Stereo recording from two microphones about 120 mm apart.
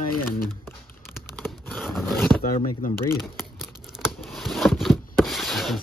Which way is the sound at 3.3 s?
5° right (ahead or behind).